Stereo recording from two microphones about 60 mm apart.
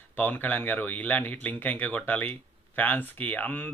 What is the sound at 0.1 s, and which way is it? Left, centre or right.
Speech, left.